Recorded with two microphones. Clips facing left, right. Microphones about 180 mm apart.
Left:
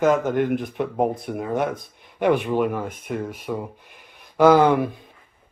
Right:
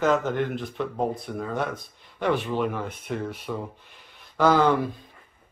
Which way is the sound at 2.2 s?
55° left (ahead or behind).